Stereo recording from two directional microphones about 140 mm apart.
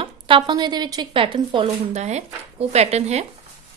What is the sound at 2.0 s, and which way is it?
Speech, 55° right (ahead or behind).